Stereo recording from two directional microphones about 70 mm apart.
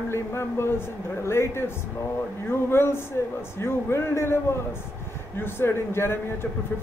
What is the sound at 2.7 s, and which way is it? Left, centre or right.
A man's voice, left.